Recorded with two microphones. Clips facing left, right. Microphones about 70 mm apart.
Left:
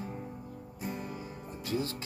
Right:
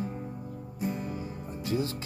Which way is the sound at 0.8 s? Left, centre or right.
Centre.